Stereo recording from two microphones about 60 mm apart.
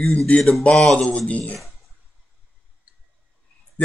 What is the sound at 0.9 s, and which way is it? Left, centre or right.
Speech, centre.